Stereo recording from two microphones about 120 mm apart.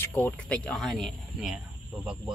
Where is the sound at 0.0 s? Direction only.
15° left (ahead or behind); by 1.6 s centre (ahead or behind).